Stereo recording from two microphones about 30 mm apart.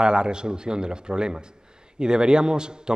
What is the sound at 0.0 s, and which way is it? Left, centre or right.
Speech, right.